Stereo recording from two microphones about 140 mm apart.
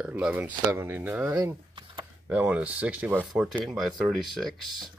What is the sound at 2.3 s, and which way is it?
Speech, 10° right (ahead or behind).